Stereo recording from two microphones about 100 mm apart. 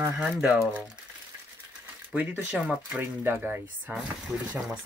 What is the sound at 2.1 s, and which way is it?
Speech, 15° right (ahead or behind).